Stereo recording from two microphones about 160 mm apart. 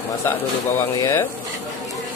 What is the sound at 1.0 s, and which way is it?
Speech, 15° left (ahead or behind).